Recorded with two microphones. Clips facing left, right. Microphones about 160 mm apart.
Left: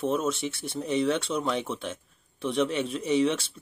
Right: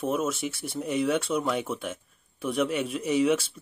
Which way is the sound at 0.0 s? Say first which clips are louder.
Left 1 dB; 5° right (ahead or behind).